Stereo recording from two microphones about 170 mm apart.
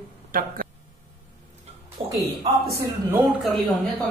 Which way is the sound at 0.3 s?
55° right (ahead or behind).